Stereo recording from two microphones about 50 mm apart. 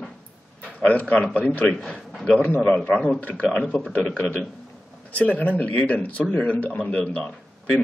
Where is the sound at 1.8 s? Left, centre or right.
Centre.